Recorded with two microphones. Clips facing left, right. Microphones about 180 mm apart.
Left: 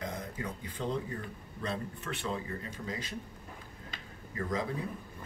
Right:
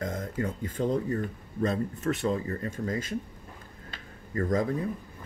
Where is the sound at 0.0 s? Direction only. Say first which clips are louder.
Right 7 dB; 45° right (ahead or behind).